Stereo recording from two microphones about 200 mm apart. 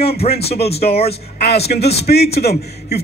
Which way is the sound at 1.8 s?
55° left (ahead or behind).